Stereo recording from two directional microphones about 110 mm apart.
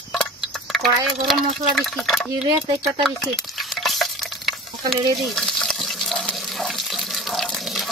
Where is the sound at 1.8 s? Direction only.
Centre (ahead or behind).